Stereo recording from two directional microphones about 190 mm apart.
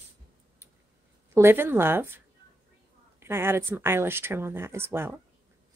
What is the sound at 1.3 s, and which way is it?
Speech, 10° right (ahead or behind).